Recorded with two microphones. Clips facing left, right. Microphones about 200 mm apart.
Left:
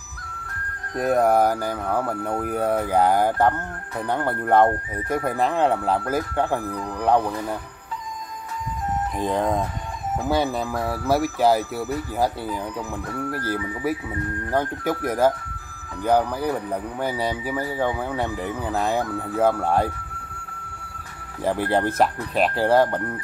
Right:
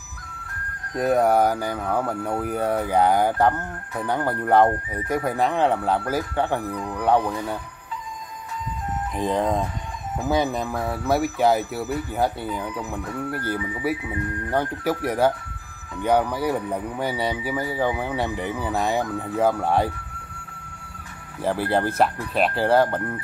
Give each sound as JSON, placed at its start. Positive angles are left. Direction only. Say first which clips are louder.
{"t": 0.9, "sound": "speech", "louder": "even", "side_deg": 0}
{"t": 9.1, "sound": "speech", "louder": "right 1 dB", "side_deg": 0}
{"t": 14.5, "sound": "speech", "louder": "even", "side_deg": 0}
{"t": 21.4, "sound": "speech", "louder": "left 1 dB", "side_deg": 0}